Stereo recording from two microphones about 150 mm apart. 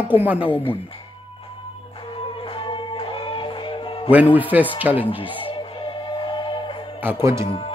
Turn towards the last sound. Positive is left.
turn(degrees=35)  # may be behind; listen again after turning